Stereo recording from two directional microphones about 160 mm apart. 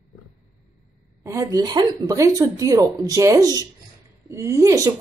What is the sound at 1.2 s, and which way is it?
Speech, 20° right (ahead or behind).